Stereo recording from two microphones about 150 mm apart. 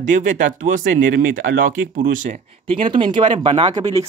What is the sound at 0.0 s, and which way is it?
Speech, 55° right (ahead or behind).